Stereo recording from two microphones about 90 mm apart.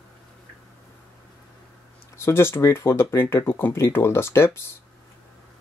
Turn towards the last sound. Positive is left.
turn(degrees=30)  # may be behind; listen again after turning